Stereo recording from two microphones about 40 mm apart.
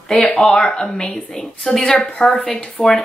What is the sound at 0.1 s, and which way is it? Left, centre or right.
A woman's voice, left.